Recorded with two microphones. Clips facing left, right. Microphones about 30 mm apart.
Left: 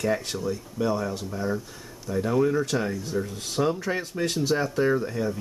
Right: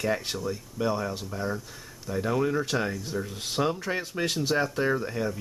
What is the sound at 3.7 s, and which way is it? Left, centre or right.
Speech, centre.